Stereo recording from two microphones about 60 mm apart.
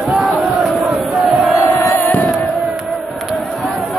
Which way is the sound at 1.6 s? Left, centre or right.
Left.